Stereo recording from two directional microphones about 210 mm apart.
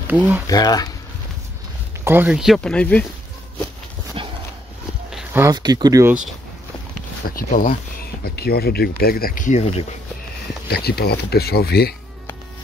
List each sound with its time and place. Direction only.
0.1 s speech: 5° right (ahead or behind)
0.5 s speech: 20° left (ahead or behind)
2.0 s speech: 10° right (ahead or behind)
5.1 s speech: 10° right (ahead or behind)
7.3 s speech: 40° left (ahead or behind)
10.7 s speech: 50° left (ahead or behind)